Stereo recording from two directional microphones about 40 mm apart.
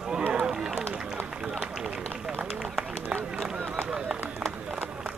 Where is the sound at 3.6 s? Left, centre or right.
Right.